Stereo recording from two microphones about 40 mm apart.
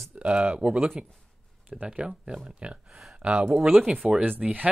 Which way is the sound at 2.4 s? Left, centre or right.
Right.